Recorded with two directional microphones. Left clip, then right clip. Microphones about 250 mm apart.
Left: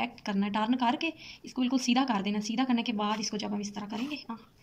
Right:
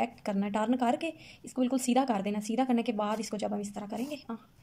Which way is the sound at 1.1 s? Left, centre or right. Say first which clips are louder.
Left 3 dB; right.